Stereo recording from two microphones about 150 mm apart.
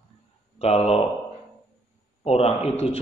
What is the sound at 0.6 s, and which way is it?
Speech, 45° left (ahead or behind).